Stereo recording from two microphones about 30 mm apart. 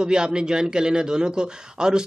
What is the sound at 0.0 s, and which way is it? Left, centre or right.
A man's voice, right.